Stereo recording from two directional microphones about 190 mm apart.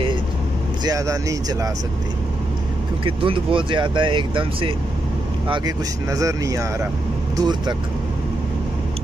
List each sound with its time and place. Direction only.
0.8 s speech: 15° right (ahead or behind)
3.1 s speech: 30° right (ahead or behind)
6.0 s speech: 15° right (ahead or behind)